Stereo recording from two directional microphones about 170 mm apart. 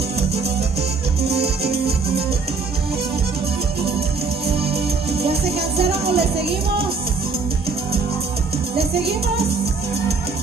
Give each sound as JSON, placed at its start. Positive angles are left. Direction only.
{"t": 5.8, "sound": "music", "side_deg": -35}